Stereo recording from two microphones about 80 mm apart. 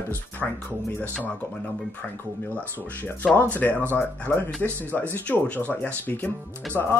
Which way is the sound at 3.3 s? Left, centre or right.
Left.